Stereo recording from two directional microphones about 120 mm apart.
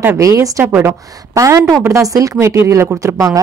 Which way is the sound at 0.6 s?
15° right (ahead or behind).